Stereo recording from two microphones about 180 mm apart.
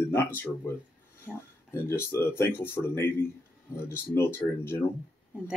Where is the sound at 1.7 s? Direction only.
15° left (ahead or behind).